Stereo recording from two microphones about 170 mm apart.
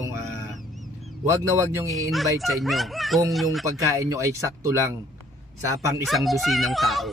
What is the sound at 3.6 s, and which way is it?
Speech, 20° right (ahead or behind).